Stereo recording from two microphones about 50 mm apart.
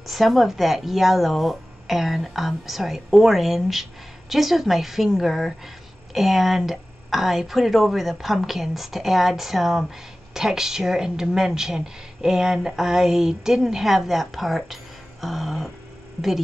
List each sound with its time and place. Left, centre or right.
0.0 s a woman's voice: centre